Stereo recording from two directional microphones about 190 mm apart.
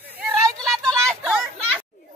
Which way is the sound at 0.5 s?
5° left (ahead or behind).